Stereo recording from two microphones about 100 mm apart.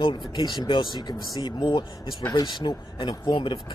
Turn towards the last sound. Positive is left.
turn(degrees=55)  # may be behind; listen again after turning